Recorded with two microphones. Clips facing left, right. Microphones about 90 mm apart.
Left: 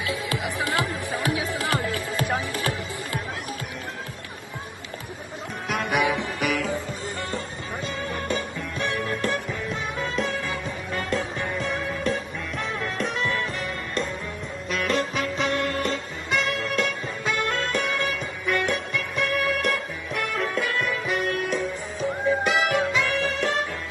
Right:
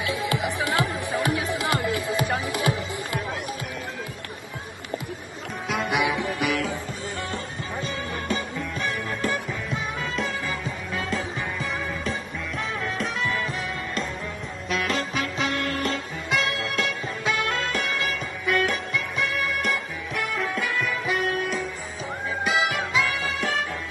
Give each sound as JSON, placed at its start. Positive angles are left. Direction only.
{"t": 0.6, "sound": "music", "side_deg": -20}
{"t": 2.0, "sound": "music", "side_deg": 0}
{"t": 2.4, "sound": "music", "side_deg": -15}
{"t": 5.7, "sound": "music", "side_deg": 0}
{"t": 8.1, "sound": "music", "side_deg": 0}
{"t": 14.7, "sound": "music", "side_deg": 0}